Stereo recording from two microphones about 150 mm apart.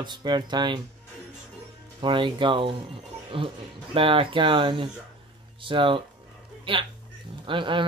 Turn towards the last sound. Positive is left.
turn(degrees=-35)  # may be behind; listen again after turning